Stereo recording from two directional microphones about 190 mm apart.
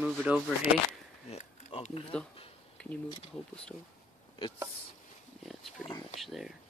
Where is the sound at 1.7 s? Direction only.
30° left (ahead or behind).